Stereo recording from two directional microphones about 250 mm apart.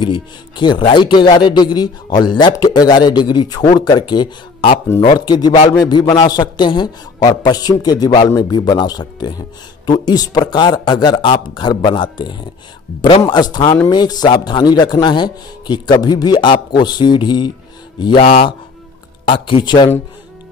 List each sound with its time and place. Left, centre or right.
0.0 s speech: centre